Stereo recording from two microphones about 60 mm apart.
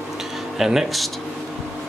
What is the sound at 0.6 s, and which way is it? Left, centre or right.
Speech, centre.